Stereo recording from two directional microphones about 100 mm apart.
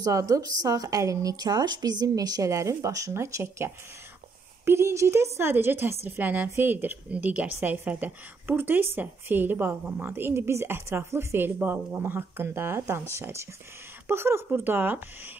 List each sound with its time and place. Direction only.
0.0 s a woman's voice: 35° right (ahead or behind)